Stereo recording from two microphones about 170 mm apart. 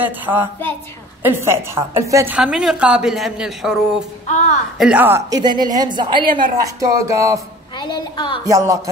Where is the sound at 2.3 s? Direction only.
5° right (ahead or behind).